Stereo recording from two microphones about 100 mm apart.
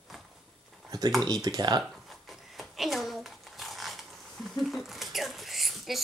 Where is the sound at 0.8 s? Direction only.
40° right (ahead or behind).